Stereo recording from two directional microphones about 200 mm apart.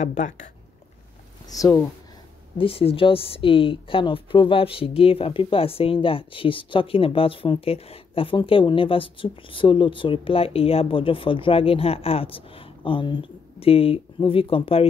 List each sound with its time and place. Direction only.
0.0 s speech: 35° left (ahead or behind)
1.5 s speech: 15° left (ahead or behind)
2.5 s speech: 25° left (ahead or behind)